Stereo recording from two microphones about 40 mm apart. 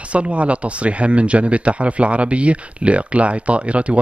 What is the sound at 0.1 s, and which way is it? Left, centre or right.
A man's voice, right.